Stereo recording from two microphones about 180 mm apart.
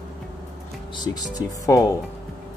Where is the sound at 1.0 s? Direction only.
20° left (ahead or behind).